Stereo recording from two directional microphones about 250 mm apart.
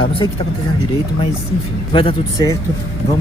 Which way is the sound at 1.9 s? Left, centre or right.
Centre.